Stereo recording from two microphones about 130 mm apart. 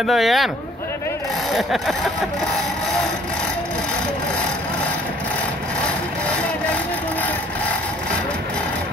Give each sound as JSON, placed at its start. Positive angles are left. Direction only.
{"t": 0.0, "sound": "speech", "side_deg": 0}
{"t": 1.6, "sound": "speech", "side_deg": 0}